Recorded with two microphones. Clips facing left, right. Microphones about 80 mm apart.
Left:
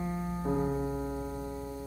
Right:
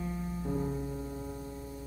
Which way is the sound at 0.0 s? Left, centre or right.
Left.